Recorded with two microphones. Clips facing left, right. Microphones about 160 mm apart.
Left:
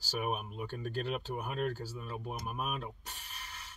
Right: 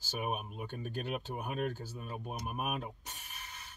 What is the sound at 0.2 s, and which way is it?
Speech, 15° right (ahead or behind).